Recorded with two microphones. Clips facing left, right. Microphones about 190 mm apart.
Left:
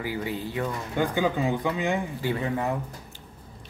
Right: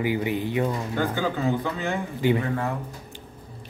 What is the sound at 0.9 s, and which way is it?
Speech, 15° left (ahead or behind).